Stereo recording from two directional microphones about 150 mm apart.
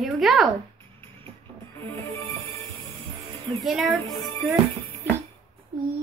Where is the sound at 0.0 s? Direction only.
Centre (ahead or behind).